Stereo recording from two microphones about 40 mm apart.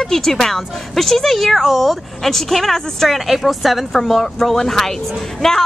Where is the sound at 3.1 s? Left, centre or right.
Centre.